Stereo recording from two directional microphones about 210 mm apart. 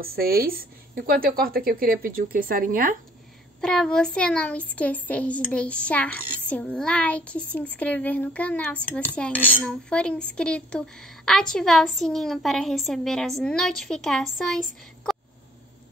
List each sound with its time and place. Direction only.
0.0 s a woman's voice: 45° right (ahead or behind)
3.6 s speech: 5° left (ahead or behind)
9.1 s cutlery: 5° left (ahead or behind)
9.5 s speech: 5° left (ahead or behind)